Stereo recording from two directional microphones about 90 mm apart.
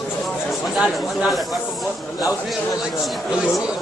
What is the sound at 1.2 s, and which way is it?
Speech, centre (ahead or behind).